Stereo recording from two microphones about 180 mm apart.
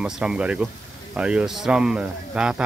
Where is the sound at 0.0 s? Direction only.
5° right (ahead or behind).